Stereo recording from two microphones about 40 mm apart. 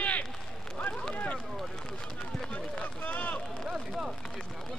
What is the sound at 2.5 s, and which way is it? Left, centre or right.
Run, left.